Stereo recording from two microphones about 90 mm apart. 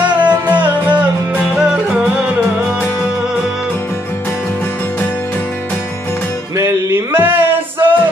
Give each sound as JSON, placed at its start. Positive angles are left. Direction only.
{"t": 0.0, "sound": "music", "side_deg": -15}
{"t": 6.5, "sound": "music", "side_deg": -30}